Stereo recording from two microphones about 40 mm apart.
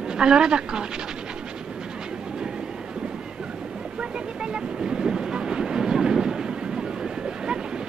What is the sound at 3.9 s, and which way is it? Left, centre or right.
Train, right.